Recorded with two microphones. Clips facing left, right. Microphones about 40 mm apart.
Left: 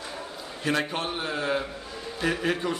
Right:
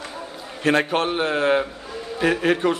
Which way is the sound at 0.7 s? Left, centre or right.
Right.